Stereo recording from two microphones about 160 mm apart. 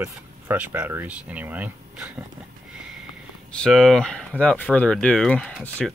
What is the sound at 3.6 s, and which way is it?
Speech, centre (ahead or behind).